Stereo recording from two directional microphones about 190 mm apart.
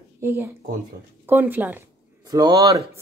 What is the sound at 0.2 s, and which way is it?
Speech, 10° right (ahead or behind).